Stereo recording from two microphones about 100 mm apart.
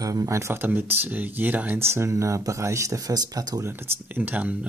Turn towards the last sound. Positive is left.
turn(degrees=-15)  # may be behind; listen again after turning